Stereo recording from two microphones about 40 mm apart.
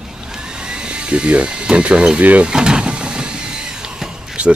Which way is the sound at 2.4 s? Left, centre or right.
Right.